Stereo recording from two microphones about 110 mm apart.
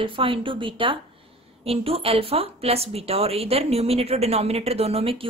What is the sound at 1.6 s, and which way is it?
A woman's voice, 65° right (ahead or behind).